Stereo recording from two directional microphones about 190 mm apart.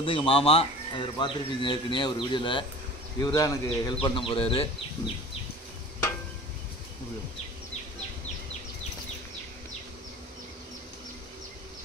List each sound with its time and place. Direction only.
0.0 s speech: 30° left (ahead or behind)